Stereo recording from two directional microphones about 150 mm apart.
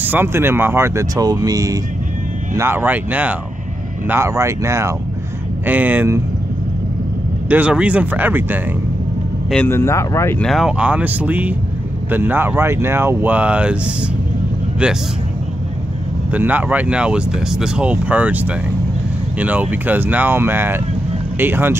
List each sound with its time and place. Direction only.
0.0 s speech: 15° right (ahead or behind)
7.4 s speech: 10° right (ahead or behind)
9.7 s speech: 15° left (ahead or behind)
10.4 s speech: centre (ahead or behind)
16.3 s speech: 10° right (ahead or behind)